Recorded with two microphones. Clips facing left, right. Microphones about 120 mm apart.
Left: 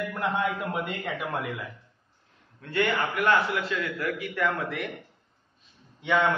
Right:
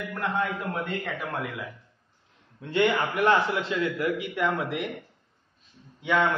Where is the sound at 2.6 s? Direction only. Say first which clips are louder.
Right 3 dB; 15° right (ahead or behind).